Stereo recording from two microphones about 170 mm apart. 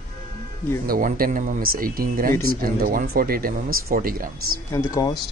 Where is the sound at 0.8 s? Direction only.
55° right (ahead or behind).